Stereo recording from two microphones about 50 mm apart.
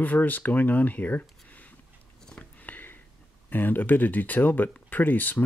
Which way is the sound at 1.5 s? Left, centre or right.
Left.